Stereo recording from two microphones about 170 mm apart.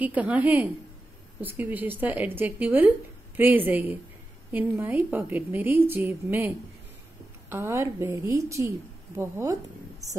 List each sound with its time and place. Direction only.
0.0 s a woman's voice: 10° right (ahead or behind)